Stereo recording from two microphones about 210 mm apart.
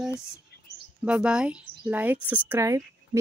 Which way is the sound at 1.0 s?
5° right (ahead or behind).